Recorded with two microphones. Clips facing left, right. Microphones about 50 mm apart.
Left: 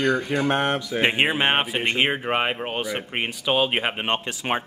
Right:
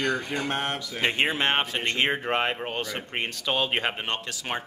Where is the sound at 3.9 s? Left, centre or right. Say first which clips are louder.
Left 5 dB; left.